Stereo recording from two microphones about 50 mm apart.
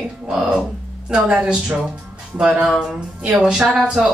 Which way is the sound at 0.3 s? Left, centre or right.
Centre.